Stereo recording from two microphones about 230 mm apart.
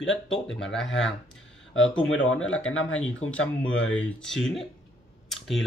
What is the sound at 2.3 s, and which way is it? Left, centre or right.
Speech, left.